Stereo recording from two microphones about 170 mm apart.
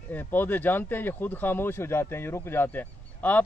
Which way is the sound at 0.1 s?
10° left (ahead or behind).